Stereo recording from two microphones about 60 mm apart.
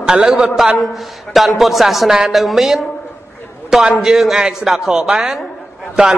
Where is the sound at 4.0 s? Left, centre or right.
Centre.